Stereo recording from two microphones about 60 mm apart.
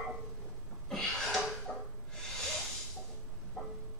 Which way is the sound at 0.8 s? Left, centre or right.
Centre.